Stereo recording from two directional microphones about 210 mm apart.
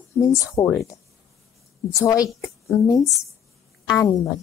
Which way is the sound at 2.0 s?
15° left (ahead or behind).